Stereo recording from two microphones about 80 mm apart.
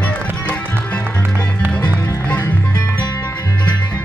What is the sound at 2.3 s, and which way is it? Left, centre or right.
Music, left.